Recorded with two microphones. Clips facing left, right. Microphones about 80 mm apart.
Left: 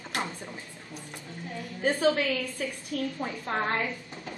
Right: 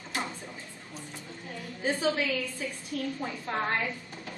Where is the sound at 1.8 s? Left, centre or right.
Left.